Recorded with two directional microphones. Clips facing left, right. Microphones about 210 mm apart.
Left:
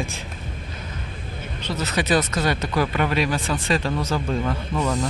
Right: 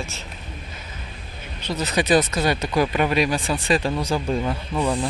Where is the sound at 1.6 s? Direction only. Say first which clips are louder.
Right 2 dB; 15° right (ahead or behind).